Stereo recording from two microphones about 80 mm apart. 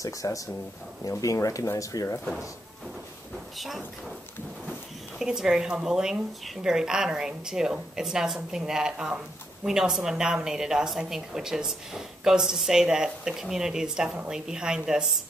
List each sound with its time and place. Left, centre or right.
0.0 s speech: left
3.5 s speech: centre
5.2 s a woman's voice: centre